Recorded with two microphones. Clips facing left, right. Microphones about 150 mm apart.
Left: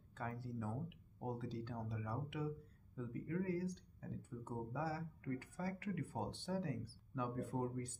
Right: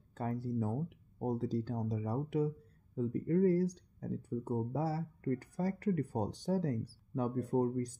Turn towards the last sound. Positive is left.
turn(degrees=-40)  # may be behind; listen again after turning